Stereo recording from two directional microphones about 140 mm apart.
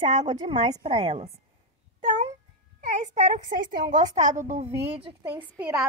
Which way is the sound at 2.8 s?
60° right (ahead or behind).